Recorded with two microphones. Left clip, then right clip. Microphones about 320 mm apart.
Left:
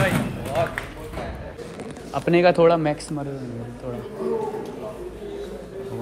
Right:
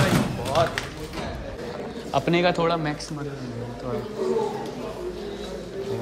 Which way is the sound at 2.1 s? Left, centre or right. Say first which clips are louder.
Left 4 dB; centre.